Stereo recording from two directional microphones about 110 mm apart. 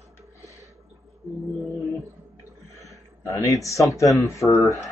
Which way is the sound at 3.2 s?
30° left (ahead or behind).